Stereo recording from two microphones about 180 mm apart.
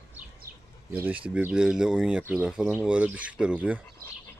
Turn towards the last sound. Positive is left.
turn(degrees=-10)  # may be behind; listen again after turning